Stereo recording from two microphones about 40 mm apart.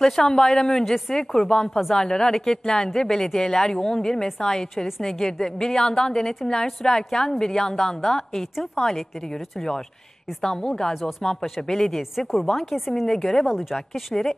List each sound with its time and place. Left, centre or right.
0.0 s a woman's voice: centre
1.7 s speech: centre
2.0 s a woman's voice: centre
10.4 s a woman's voice: centre
10.9 s speech: centre
11.6 s speech: centre
13.0 s a woman's voice: centre
13.5 s speech: centre
13.7 s a woman's voice: centre